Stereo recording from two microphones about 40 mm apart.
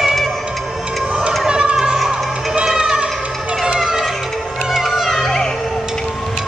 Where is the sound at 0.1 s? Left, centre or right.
Centre.